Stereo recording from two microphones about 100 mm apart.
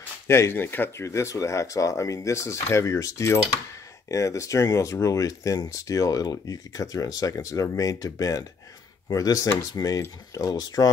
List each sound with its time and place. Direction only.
0.3 s speech: 25° left (ahead or behind); by 10.9 s 40° left (ahead or behind)